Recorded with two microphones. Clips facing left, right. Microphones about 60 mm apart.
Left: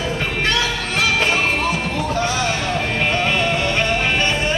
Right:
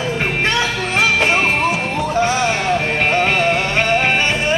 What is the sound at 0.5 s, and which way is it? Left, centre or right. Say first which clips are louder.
Music: right 2 dB; right.